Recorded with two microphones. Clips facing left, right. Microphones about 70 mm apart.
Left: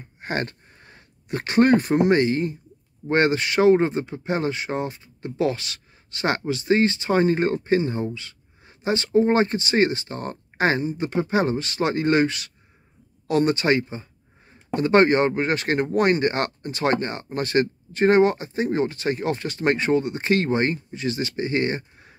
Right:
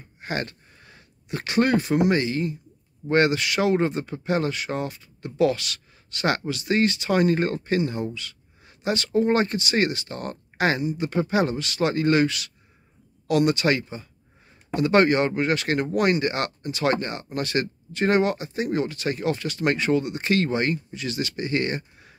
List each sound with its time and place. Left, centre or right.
0.2 s speech: left